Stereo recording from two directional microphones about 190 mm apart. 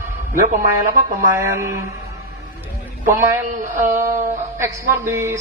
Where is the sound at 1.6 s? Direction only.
15° right (ahead or behind).